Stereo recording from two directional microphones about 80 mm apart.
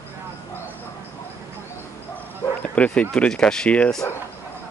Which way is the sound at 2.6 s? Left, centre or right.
Centre.